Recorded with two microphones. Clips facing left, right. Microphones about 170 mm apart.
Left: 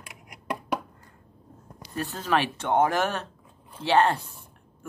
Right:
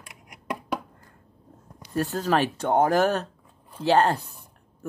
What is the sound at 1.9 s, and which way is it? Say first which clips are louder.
Speech: right 3 dB; 40° right (ahead or behind).